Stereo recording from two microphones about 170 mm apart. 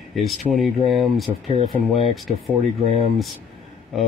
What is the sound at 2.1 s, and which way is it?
Speech, centre (ahead or behind).